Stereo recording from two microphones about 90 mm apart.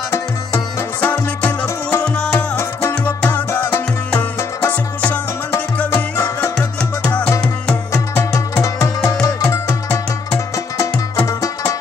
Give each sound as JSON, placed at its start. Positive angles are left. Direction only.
{"t": 0.1, "sound": "music", "side_deg": 30}
{"t": 1.0, "sound": "music", "side_deg": 10}
{"t": 4.6, "sound": "music", "side_deg": 15}
{"t": 6.1, "sound": "music", "side_deg": 30}
{"t": 7.1, "sound": "music", "side_deg": 20}
{"t": 10.5, "sound": "music", "side_deg": 35}